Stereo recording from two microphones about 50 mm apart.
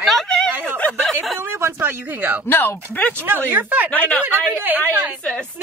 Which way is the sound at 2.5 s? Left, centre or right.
Left.